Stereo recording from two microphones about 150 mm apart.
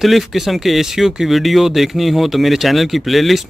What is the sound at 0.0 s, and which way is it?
Speech, centre (ahead or behind).